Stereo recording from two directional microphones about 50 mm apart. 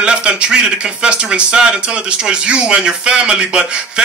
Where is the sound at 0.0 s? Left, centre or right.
Centre.